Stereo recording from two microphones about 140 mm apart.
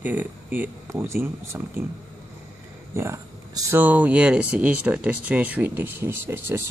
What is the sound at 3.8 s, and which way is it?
Speech, 10° right (ahead or behind).